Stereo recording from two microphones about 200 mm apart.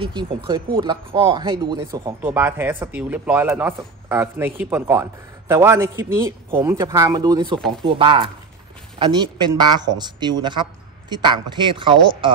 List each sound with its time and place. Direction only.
0.0 s a woman's voice: 25° right (ahead or behind)
2.2 s a woman's voice: 10° right (ahead or behind)